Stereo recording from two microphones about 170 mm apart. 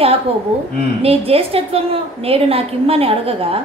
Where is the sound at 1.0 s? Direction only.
35° right (ahead or behind).